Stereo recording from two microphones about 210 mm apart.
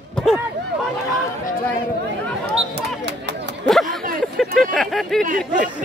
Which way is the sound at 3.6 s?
Centre (ahead or behind).